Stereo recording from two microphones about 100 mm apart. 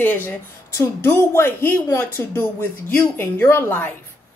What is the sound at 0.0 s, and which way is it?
Speech, 20° left (ahead or behind).